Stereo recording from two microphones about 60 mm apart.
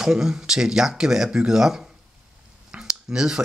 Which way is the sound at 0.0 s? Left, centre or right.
Centre.